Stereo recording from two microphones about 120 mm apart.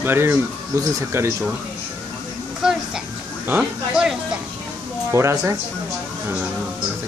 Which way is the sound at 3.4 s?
10° right (ahead or behind).